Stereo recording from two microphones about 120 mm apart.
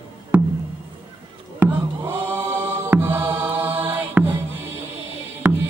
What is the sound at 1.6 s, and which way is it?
Chant, 15° right (ahead or behind).